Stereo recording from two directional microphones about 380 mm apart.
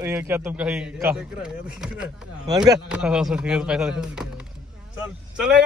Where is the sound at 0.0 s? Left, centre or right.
Centre.